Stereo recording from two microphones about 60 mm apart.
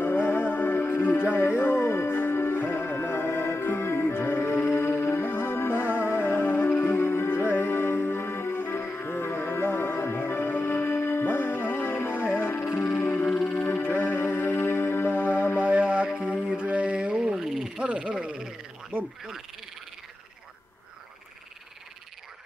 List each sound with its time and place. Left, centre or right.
0.0 s music: left
4.7 s music: left
6.9 s music: left
12.8 s music: left
13.2 s music: centre
13.7 s music: left
15.5 s music: centre
16.5 s frog: centre
17.8 s frog: centre